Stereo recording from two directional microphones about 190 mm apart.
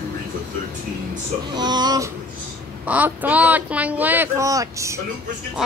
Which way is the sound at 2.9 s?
10° right (ahead or behind).